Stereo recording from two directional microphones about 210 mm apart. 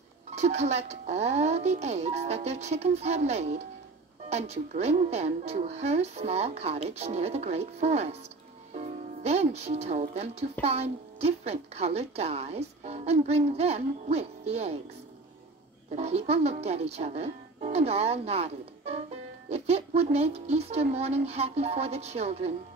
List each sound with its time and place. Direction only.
0.3 s a woman's voice: 30° right (ahead or behind)
15.9 s speech: 30° right (ahead or behind)